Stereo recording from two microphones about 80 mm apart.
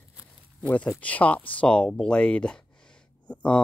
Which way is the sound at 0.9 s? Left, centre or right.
Centre.